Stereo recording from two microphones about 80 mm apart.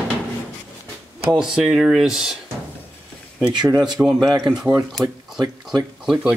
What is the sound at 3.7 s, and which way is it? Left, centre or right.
Speech, right.